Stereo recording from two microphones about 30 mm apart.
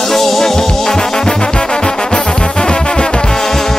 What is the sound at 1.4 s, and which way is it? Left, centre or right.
Music, left.